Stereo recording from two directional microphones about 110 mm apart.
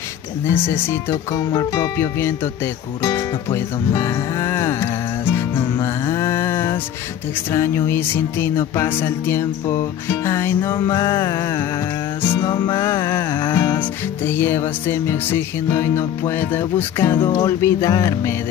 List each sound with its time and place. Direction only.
0.5 s music: 20° left (ahead or behind)
1.1 s music: 35° left (ahead or behind)
3.0 s speech: 30° left (ahead or behind)
3.5 s music: 30° left (ahead or behind)
12.8 s music: 25° left (ahead or behind)